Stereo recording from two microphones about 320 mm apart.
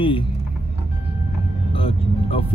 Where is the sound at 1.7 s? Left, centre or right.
Centre.